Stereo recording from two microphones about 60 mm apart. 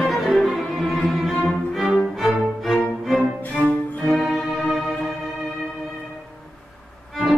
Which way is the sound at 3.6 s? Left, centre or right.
Left.